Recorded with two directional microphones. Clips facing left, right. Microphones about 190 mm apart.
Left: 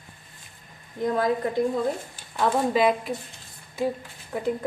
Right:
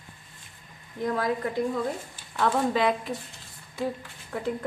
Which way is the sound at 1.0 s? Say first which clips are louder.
Left 3 dB; 25° left (ahead or behind).